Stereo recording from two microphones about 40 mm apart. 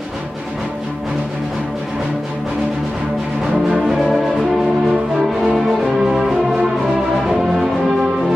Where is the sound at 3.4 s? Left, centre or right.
Centre.